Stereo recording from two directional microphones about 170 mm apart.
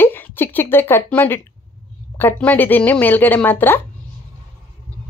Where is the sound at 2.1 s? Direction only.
10° left (ahead or behind).